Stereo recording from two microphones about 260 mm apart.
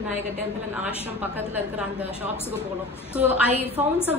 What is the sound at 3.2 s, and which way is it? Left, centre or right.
Speech, centre.